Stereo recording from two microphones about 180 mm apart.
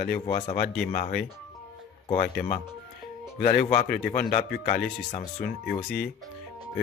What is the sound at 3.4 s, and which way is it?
Speech, 55° left (ahead or behind).